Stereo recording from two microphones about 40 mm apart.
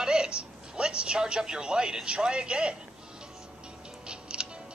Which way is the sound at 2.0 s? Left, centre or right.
Right.